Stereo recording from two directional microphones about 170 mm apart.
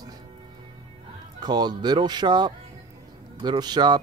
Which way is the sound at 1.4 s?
25° right (ahead or behind).